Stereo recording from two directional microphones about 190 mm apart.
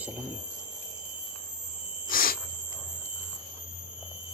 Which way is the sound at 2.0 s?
50° left (ahead or behind).